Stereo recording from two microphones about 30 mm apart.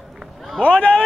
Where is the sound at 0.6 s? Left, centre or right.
Left.